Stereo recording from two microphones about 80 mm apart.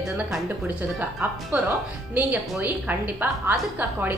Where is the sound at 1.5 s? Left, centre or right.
Right.